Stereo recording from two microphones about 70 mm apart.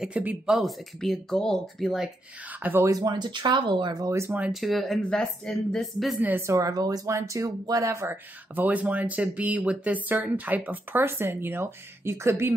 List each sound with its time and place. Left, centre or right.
0.1 s speech: right
0.5 s speech: centre
2.4 s speech: right
2.8 s speech: right
4.5 s speech: centre
6.4 s speech: right
7.1 s speech: right
8.5 s speech: right